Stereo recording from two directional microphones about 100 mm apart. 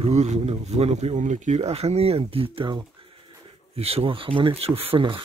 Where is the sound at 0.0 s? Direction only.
90° right; by 2.8 s 60° right (ahead or behind).